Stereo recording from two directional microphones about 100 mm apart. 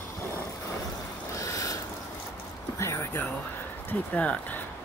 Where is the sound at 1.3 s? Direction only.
35° left (ahead or behind).